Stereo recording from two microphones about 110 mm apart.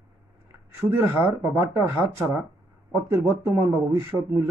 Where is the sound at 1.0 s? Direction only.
20° right (ahead or behind).